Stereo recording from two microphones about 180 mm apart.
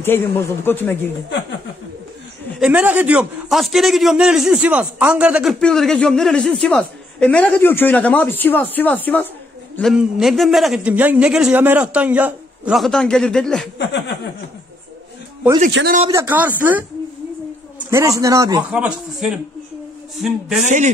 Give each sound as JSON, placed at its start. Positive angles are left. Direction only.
{"t": 0.0, "sound": "a man's voice", "side_deg": 10}
{"t": 2.6, "sound": "a man's voice", "side_deg": -5}
{"t": 9.8, "sound": "a man's voice", "side_deg": 0}
{"t": 15.8, "sound": "a man's voice", "side_deg": -90}
{"t": 16.1, "sound": "a man's voice", "side_deg": -15}
{"t": 18.7, "sound": "a man's voice", "side_deg": -5}
{"t": 20.6, "sound": "a man's voice", "side_deg": -40}